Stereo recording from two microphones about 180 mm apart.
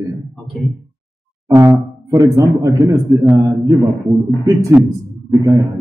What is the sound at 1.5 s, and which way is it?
A man's voice, 15° right (ahead or behind).